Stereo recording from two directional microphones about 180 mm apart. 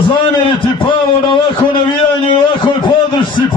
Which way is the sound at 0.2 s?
30° left (ahead or behind).